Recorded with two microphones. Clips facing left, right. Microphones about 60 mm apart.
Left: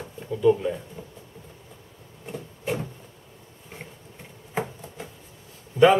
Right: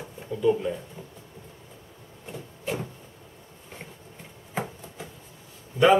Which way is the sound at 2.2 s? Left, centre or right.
Centre.